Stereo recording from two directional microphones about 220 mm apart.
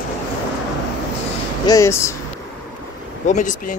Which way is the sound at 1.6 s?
15° left (ahead or behind).